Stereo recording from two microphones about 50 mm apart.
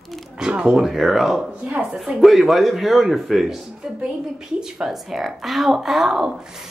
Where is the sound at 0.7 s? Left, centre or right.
Centre.